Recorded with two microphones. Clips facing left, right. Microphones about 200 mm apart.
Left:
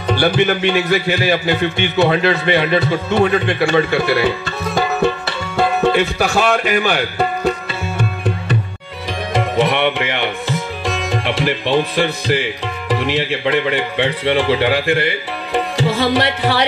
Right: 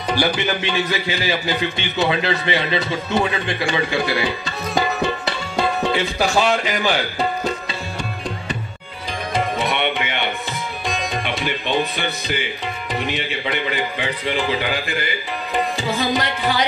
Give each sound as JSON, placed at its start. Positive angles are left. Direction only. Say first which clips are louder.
{"t": 0.0, "sound": "a man's voice", "louder": "left 5 dB", "side_deg": 60}
{"t": 5.6, "sound": "speech", "louder": "left 6 dB", "side_deg": 60}
{"t": 9.3, "sound": "music", "louder": "left 6 dB", "side_deg": 85}
{"t": 11.2, "sound": "speech", "louder": "left 6 dB", "side_deg": 85}